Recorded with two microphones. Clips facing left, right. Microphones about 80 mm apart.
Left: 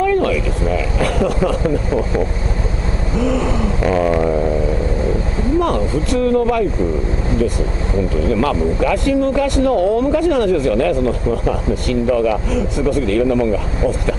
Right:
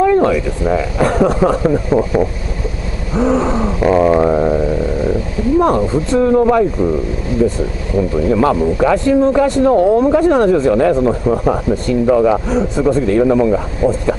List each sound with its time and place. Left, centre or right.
0.0 s speech: right
3.2 s a sound: right
5.6 s speech: right
8.3 s speech: right